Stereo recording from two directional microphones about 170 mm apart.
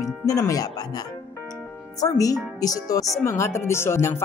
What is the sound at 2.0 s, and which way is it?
Speech, 20° left (ahead or behind).